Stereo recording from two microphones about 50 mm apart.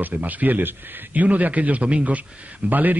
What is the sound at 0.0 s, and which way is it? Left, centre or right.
A man's voice, right.